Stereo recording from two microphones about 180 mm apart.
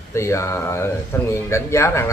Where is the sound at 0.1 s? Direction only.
15° left (ahead or behind).